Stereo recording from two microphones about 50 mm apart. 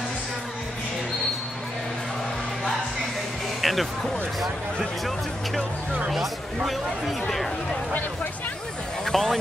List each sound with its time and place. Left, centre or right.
3.6 s speech: centre
6.1 s speech: centre
9.0 s speech: centre